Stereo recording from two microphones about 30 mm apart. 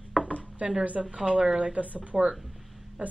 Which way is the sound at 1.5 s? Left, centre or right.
Right.